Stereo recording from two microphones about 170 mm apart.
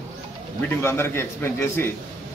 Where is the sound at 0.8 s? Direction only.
15° left (ahead or behind).